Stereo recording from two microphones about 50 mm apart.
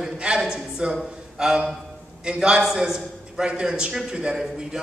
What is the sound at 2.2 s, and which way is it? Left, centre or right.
A man's voice, centre.